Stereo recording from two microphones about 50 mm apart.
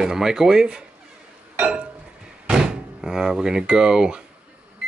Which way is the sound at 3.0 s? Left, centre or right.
Centre.